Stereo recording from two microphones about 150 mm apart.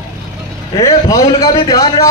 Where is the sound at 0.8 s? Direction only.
25° left (ahead or behind).